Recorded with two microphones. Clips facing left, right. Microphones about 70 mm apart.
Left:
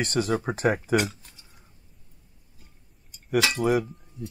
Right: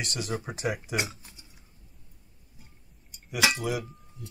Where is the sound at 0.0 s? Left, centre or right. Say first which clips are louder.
Left 8 dB; left.